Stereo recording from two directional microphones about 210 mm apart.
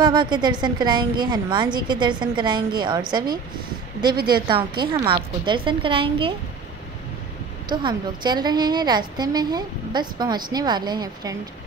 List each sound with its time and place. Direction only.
0.0 s a woman's voice: 20° right (ahead or behind)
4.5 s a woman's voice: 20° right (ahead or behind)
7.7 s a woman's voice: 20° right (ahead or behind)